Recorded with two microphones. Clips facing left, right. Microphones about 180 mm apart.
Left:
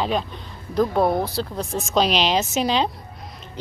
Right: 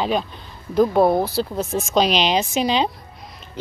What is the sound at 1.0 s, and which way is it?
Speech, 25° right (ahead or behind).